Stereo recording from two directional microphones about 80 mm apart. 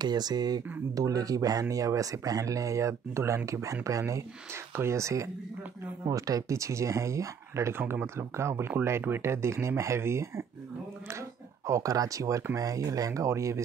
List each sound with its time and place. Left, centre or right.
0.0 s speech: right